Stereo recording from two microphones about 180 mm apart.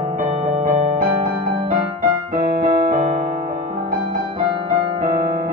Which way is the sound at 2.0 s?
45° right (ahead or behind).